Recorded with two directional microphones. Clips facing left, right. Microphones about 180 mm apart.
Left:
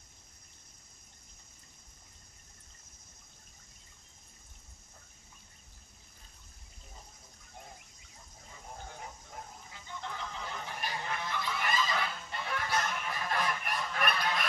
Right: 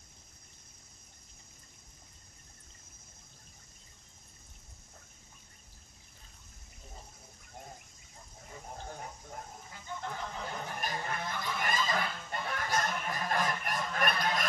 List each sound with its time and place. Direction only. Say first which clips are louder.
9.7 s honk: right 3 dB; 45° right (ahead or behind)